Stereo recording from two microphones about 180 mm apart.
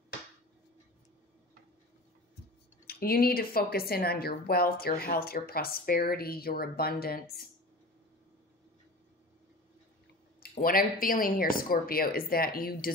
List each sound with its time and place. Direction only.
2.9 s a woman's voice: 55° left (ahead or behind)
10.4 s speech: 55° left (ahead or behind)